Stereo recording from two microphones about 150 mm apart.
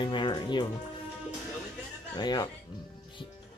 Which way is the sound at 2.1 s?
25° left (ahead or behind).